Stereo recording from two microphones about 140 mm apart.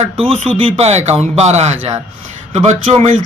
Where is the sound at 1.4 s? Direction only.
50° right (ahead or behind).